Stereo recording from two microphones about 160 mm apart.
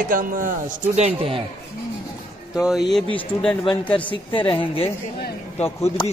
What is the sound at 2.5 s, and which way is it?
Speech, 5° right (ahead or behind).